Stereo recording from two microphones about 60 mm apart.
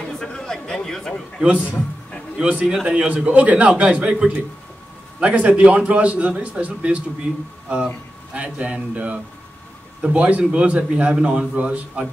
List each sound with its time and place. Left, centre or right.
0.2 s a sound: centre
1.6 s a man's voice: left
2.3 s a man's voice: right
8.4 s a man's voice: right